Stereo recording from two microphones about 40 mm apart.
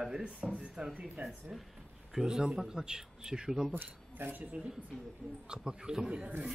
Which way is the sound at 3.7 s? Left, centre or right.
Right.